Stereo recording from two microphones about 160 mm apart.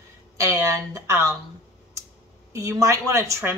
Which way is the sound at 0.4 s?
20° right (ahead or behind).